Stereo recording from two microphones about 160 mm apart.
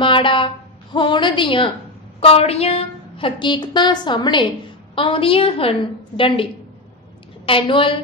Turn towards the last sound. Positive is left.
turn(degrees=35)  # may be behind; listen again after turning